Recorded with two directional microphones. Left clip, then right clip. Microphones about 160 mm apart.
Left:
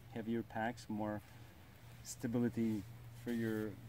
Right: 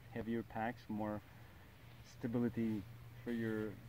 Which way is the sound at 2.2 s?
25° left (ahead or behind).